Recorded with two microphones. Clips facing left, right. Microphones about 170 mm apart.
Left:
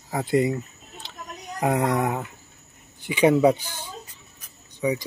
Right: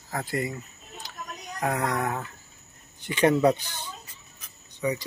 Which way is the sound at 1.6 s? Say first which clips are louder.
Left 5 dB; 20° left (ahead or behind).